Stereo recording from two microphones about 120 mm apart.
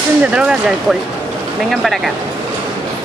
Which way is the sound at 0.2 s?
10° right (ahead or behind).